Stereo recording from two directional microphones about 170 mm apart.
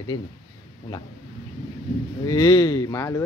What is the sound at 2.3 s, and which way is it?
Speech, 25° left (ahead or behind).